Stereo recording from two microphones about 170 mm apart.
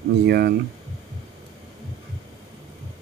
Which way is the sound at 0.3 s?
70° right (ahead or behind).